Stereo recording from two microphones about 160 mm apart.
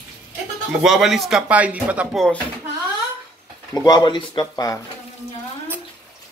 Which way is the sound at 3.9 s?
30° left (ahead or behind).